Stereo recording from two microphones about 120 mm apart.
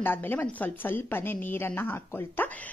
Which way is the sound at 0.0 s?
15° left (ahead or behind).